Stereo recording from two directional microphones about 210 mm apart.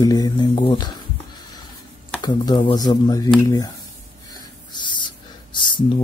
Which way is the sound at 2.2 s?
20° left (ahead or behind).